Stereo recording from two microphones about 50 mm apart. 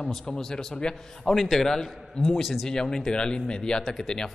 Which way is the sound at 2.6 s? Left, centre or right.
Centre.